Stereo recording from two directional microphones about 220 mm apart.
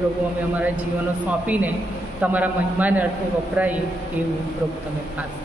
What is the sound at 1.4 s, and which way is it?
A man's voice, 5° right (ahead or behind).